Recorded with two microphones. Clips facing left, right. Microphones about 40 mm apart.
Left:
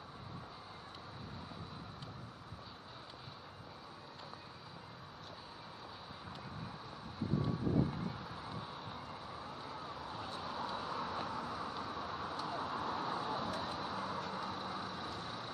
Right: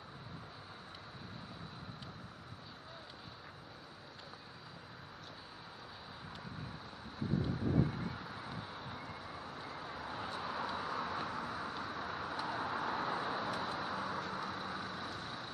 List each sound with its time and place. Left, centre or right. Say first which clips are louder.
8.0 s vehicle: even; centre; by 10.7 s right
10.7 s vehicle: right 1 dB; centre
14.6 s vehicle: even; centre
15.0 s vehicle: even; centre